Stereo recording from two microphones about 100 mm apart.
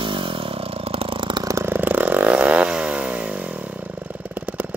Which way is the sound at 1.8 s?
15° right (ahead or behind).